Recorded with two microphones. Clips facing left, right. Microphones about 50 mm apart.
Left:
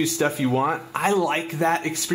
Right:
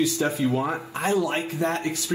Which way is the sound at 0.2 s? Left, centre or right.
Left.